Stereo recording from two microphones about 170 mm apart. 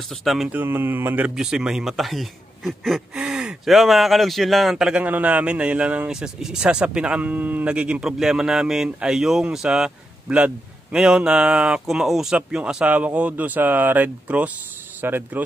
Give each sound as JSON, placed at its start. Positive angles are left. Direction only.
{"t": 0.2, "sound": "speech", "side_deg": 0}